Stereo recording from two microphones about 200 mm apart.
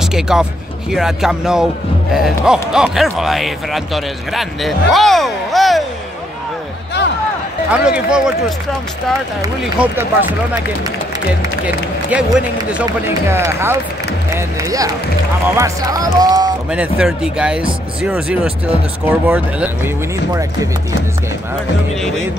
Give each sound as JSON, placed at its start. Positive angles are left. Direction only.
{"t": 0.0, "sound": "speech", "side_deg": -5}
{"t": 7.7, "sound": "speech", "side_deg": -5}
{"t": 9.6, "sound": "speech", "side_deg": -5}
{"t": 11.6, "sound": "speech", "side_deg": -5}
{"t": 16.7, "sound": "speech", "side_deg": -5}
{"t": 21.9, "sound": "speech", "side_deg": 0}